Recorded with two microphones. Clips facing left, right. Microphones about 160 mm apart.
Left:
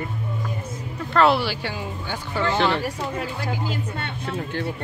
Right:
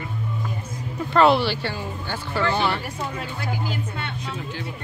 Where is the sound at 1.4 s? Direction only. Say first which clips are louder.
Right 2 dB; 10° left (ahead or behind).